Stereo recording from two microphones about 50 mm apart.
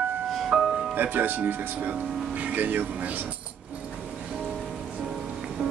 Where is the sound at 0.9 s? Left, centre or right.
Right.